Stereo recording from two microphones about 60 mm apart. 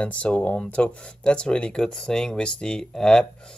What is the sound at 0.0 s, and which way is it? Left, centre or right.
Speech, left.